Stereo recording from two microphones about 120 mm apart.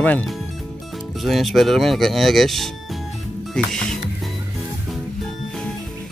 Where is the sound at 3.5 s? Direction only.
5° left (ahead or behind).